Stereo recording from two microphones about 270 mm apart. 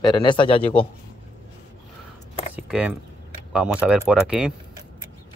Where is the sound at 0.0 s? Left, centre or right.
Centre.